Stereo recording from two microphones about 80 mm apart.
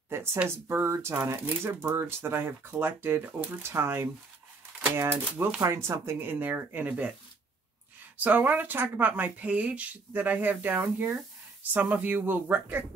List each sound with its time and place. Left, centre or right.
0.1 s speech: right
8.2 s speech: right